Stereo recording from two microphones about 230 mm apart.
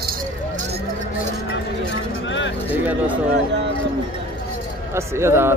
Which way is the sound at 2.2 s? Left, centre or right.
Left.